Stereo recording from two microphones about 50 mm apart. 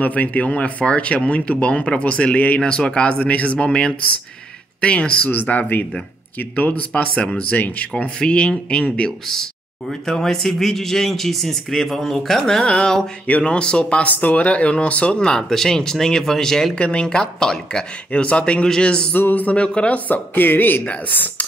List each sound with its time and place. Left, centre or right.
0.0 s speech: left
2.6 s speech: centre; by 7.9 s left
7.9 s speech: left
9.3 s speech: centre
14.0 s speech: left; by 16.7 s centre
16.7 s speech: left
19.1 s speech: left
19.6 s speech: left
20.1 s speech: left